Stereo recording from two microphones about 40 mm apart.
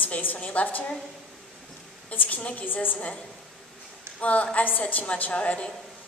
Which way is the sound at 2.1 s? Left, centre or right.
Left.